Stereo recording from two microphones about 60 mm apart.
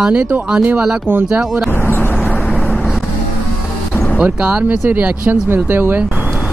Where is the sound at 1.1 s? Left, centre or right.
Right.